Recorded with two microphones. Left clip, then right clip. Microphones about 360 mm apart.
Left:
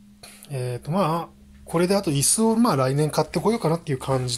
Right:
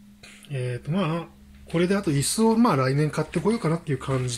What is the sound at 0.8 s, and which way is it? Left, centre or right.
Speech, centre.